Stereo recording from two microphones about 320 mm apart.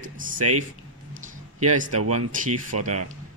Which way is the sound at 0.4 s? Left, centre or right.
Right.